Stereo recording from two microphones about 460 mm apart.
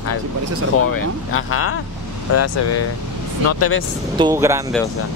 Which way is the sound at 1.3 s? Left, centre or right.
Left.